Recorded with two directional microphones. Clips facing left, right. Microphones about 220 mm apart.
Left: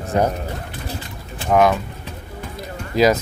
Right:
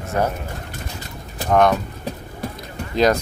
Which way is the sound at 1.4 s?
5° left (ahead or behind).